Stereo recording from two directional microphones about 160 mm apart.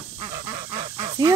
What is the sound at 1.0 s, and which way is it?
Goose, 20° right (ahead or behind).